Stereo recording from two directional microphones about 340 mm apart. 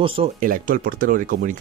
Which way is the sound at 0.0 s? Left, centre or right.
Centre.